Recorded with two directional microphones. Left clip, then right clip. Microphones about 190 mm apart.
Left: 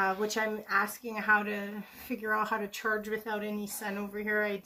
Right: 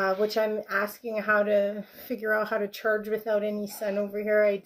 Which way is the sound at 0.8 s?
15° left (ahead or behind).